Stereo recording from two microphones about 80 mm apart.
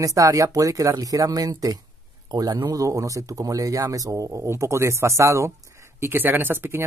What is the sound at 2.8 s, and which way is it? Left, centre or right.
Speech, right.